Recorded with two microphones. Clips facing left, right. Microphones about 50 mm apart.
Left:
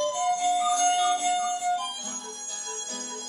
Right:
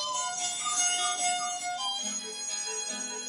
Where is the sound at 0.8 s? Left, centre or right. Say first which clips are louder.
Left 8 dB; centre.